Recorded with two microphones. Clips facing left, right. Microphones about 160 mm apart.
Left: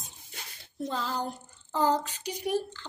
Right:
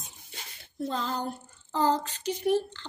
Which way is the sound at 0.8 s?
10° left (ahead or behind).